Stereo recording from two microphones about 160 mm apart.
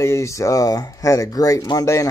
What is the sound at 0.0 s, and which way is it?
Speech, 20° left (ahead or behind).